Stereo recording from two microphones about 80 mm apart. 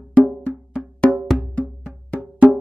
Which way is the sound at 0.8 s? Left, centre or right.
Centre.